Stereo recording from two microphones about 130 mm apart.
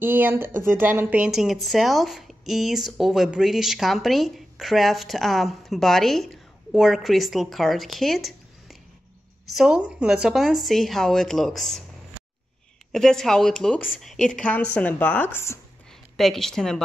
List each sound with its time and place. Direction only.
0.0 s speech: 15° right (ahead or behind)
1.2 s speech: 5° right (ahead or behind)
12.9 s speech: 5° left (ahead or behind); by 15.6 s 20° left (ahead or behind)
15.9 s speech: centre (ahead or behind)